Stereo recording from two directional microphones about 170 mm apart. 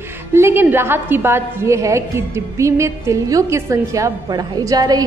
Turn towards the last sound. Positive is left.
turn(degrees=-20)  # may be behind; listen again after turning